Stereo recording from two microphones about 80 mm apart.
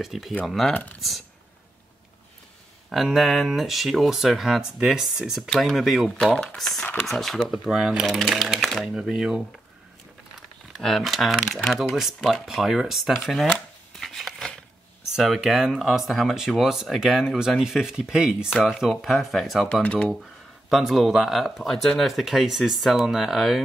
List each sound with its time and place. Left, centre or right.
0.0 s speech: centre
0.7 s speech: centre
2.9 s speech: centre
10.8 s speech: centre
13.9 s a sound: centre
15.1 s speech: centre
19.6 s speech: centre
20.7 s speech: centre